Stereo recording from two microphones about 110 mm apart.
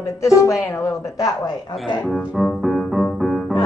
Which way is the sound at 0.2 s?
30° left (ahead or behind).